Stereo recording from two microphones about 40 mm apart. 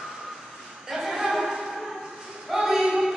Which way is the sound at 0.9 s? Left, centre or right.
Centre.